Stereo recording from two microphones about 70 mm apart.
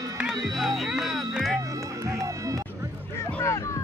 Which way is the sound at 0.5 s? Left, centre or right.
Centre.